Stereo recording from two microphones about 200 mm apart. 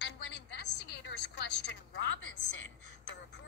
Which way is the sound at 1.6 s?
60° left (ahead or behind).